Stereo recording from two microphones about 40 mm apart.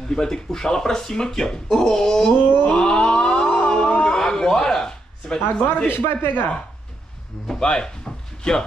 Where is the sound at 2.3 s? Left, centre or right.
Left.